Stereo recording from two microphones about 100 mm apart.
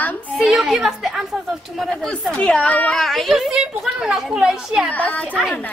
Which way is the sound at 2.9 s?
Centre (ahead or behind).